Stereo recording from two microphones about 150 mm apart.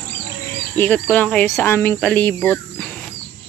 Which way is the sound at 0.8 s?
10° left (ahead or behind).